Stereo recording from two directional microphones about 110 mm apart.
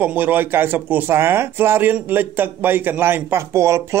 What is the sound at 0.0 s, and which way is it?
Speech, 15° right (ahead or behind).